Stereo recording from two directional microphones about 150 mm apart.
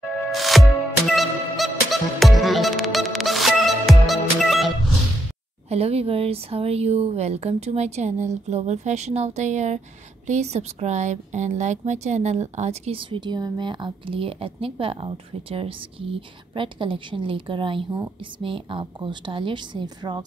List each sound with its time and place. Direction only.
0.3 s music: centre (ahead or behind)
5.7 s speech: 40° right (ahead or behind)